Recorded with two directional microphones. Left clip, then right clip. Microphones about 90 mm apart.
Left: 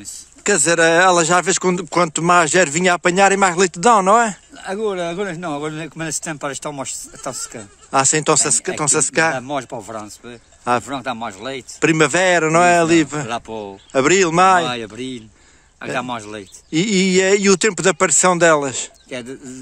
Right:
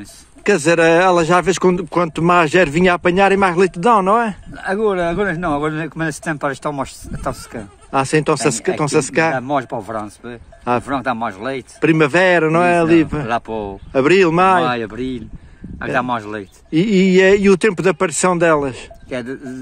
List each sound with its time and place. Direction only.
0.0 s speech: 10° left (ahead or behind); by 4.4 s 30° left (ahead or behind)
4.6 s speech: 10° left (ahead or behind)
8.5 s speech: 5° left (ahead or behind)
9.3 s speech: 20° left (ahead or behind)
11.8 s speech: 25° left (ahead or behind)
17.8 s speech: 25° left (ahead or behind)
19.0 s speech: 15° left (ahead or behind)